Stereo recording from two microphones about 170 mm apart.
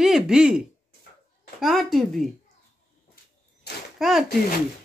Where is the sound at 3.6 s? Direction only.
70° left (ahead or behind).